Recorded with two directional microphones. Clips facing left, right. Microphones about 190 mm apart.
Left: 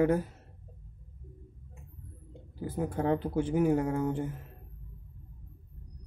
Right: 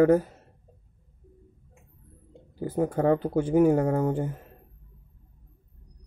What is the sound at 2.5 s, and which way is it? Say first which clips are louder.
Speech: right 6 dB; 50° right (ahead or behind).